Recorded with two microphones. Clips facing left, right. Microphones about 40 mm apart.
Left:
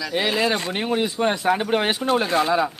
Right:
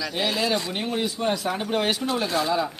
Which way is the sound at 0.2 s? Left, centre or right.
Left.